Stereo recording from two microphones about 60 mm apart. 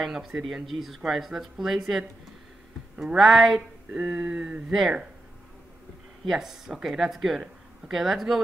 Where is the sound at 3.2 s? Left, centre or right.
Centre.